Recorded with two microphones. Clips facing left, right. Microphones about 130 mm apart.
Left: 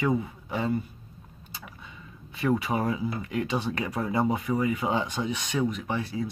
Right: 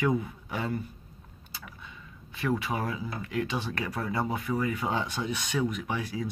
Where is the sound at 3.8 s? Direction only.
20° left (ahead or behind).